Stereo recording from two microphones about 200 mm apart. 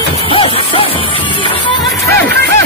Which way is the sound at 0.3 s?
25° left (ahead or behind).